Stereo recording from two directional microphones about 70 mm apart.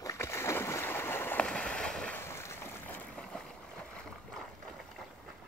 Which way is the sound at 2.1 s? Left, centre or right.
Left.